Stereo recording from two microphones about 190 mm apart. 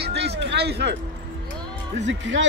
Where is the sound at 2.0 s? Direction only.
75° right (ahead or behind).